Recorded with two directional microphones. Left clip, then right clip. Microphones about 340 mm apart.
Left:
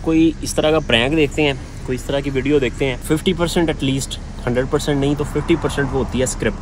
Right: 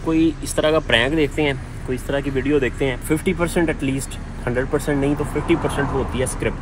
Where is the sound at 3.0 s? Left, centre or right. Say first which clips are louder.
Left 2 dB; centre.